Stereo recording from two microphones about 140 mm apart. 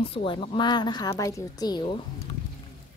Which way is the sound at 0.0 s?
40° left (ahead or behind).